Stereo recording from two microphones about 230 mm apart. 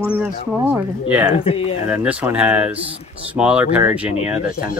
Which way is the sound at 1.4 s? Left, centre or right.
Left.